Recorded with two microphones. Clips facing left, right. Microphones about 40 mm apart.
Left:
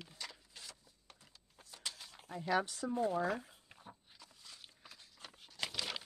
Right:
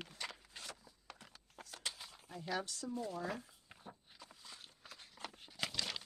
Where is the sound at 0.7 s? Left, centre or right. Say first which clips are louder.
Right 5 dB; right.